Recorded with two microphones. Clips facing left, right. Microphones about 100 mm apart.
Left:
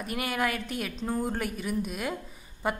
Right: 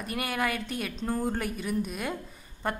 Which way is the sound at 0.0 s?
Centre (ahead or behind).